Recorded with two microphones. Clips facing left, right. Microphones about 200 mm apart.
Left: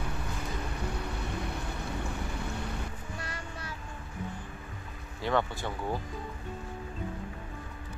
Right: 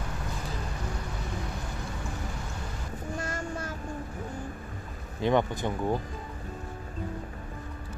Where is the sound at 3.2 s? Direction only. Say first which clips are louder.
Right 7 dB; 45° right (ahead or behind).